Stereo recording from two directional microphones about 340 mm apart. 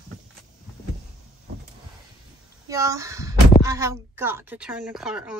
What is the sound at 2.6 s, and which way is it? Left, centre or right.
Speech, centre.